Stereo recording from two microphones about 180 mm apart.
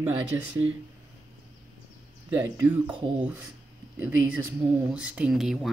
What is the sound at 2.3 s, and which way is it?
Speech, 10° right (ahead or behind).